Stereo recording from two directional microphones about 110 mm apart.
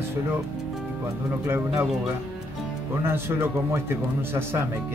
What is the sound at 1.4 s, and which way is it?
Speech, 25° right (ahead or behind).